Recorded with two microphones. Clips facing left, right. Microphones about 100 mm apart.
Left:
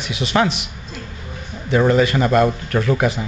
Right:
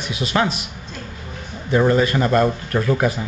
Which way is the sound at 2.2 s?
10° left (ahead or behind).